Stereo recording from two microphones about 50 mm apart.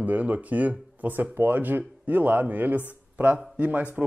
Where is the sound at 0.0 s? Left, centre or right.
Right.